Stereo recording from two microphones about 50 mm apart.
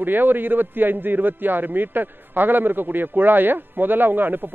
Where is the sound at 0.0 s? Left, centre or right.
Right.